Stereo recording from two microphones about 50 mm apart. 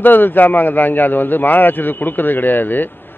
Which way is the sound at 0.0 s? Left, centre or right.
Left.